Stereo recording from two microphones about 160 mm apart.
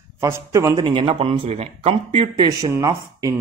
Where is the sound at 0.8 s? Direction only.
35° right (ahead or behind).